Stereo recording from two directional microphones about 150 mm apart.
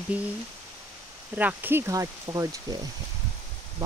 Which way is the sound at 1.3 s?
10° right (ahead or behind).